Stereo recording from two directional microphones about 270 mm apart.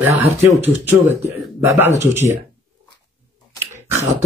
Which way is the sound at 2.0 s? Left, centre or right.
Centre.